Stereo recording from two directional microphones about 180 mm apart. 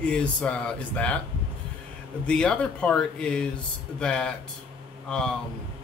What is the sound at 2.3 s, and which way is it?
Speech, 5° left (ahead or behind).